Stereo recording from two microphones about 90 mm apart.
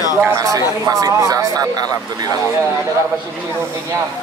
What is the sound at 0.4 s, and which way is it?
Speech, 40° right (ahead or behind).